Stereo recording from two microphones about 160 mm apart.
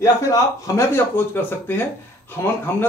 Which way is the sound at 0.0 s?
20° left (ahead or behind).